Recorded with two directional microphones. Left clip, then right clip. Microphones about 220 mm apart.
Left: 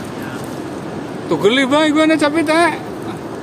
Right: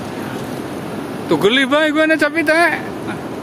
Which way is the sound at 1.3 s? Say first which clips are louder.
Even; 5° left (ahead or behind).